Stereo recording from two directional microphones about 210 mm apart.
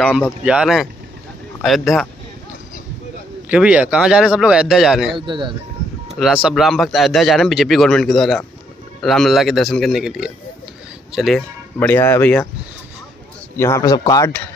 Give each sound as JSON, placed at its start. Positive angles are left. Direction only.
{"t": 0.4, "sound": "speech", "side_deg": -5}
{"t": 3.4, "sound": "speech", "side_deg": -5}
{"t": 5.1, "sound": "speech", "side_deg": -20}
{"t": 6.1, "sound": "speech", "side_deg": 0}
{"t": 13.6, "sound": "speech", "side_deg": 15}